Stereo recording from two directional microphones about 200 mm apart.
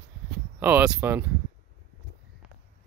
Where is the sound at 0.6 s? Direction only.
10° right (ahead or behind).